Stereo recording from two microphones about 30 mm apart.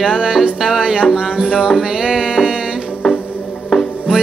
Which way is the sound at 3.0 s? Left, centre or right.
Centre.